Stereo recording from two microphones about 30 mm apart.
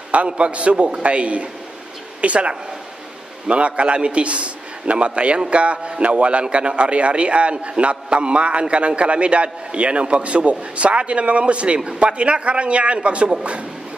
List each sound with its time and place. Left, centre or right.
0.1 s a man's voice: right